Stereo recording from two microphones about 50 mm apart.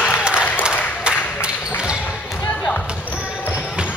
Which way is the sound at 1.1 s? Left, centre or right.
Right.